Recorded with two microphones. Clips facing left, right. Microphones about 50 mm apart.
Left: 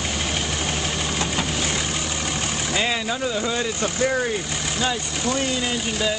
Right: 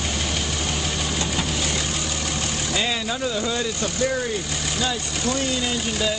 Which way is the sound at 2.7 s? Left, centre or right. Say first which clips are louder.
Left 2 dB; left.